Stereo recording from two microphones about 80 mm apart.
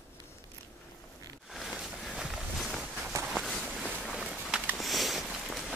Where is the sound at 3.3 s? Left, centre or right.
Centre.